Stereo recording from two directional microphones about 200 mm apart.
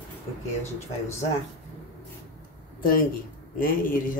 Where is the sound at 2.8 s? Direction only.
45° left (ahead or behind).